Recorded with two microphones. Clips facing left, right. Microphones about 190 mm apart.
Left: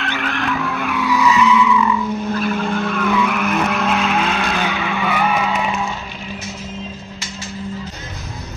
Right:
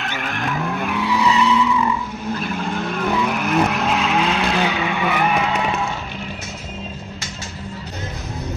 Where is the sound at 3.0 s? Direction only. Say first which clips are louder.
Left 1 dB; 30° right (ahead or behind).